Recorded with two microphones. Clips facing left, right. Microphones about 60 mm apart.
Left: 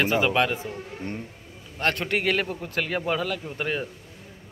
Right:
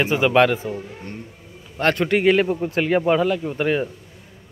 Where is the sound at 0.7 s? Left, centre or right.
Centre.